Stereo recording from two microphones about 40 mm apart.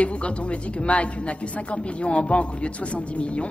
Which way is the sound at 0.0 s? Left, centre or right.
Left.